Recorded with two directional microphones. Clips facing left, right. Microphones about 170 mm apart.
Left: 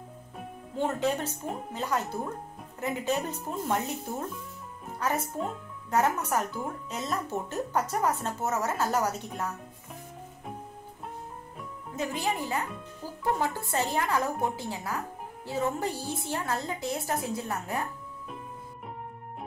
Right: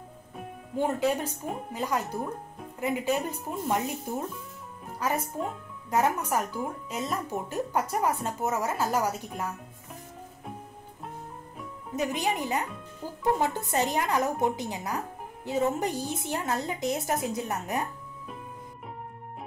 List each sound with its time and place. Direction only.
0.7 s speech: 10° right (ahead or behind)
5.0 s speech: 10° right (ahead or behind)
11.9 s a woman's voice: 15° right (ahead or behind)